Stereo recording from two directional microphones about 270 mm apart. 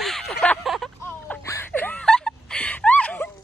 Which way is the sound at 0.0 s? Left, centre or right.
Centre.